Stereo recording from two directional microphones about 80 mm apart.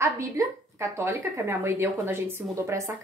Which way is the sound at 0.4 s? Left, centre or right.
Right.